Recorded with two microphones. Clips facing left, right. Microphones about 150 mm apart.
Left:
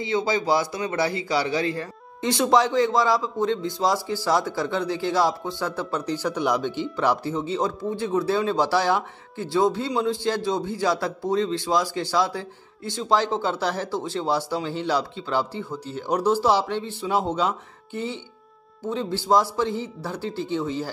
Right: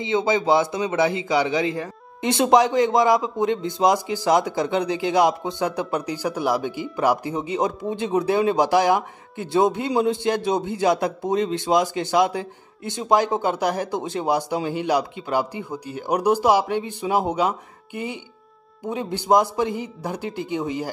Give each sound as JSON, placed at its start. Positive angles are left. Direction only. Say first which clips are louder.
{"t": 0.0, "sound": "a man's voice", "louder": "right 3 dB", "side_deg": -20}